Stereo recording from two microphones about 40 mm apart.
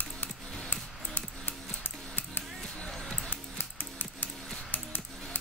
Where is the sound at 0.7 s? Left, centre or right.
Left.